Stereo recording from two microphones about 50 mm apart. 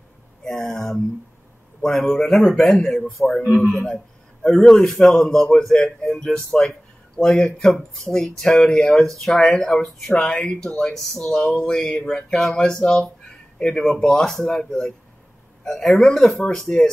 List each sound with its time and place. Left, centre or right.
0.4 s a man's voice: centre
10.0 s a man's voice: left; by 16.4 s centre